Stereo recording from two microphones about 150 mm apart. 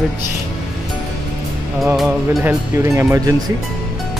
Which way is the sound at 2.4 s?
20° right (ahead or behind).